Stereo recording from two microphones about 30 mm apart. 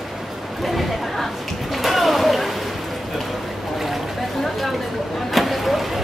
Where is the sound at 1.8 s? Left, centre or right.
Centre.